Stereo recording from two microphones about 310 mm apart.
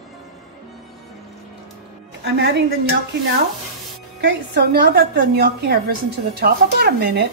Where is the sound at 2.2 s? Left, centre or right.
Right.